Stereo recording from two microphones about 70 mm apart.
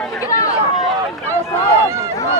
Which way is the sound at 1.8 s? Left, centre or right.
Right.